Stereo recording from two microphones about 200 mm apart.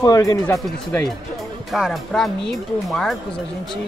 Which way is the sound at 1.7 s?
Centre (ahead or behind).